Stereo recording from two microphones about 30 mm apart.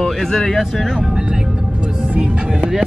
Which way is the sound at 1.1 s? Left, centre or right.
Right.